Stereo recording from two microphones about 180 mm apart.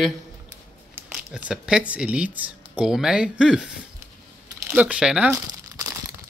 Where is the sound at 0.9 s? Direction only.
5° right (ahead or behind).